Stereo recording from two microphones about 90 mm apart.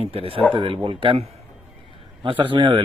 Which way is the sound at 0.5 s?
80° right.